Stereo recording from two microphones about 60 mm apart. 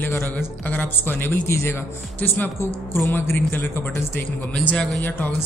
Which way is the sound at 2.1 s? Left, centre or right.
Left.